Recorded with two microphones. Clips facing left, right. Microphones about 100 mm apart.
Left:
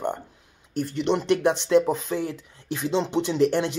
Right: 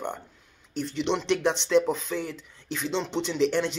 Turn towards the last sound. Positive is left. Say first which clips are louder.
# left 3 dB
turn(degrees=10)  # may be behind; listen again after turning